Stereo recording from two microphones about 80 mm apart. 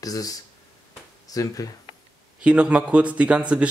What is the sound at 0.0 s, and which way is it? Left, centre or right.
Speech, left.